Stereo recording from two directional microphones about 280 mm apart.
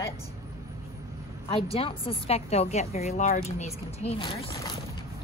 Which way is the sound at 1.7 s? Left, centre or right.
Centre.